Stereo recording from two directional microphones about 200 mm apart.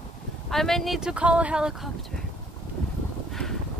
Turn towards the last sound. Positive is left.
turn(degrees=0)  # may be behind; listen again after turning